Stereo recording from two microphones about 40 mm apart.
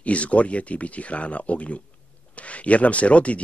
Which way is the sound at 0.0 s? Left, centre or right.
Left.